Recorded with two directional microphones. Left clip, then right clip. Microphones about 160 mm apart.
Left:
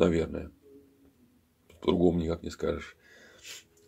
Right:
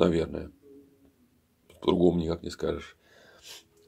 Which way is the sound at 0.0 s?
15° right (ahead or behind).